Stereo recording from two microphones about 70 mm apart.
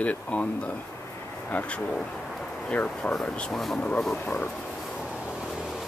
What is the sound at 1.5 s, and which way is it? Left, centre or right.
Speech, left.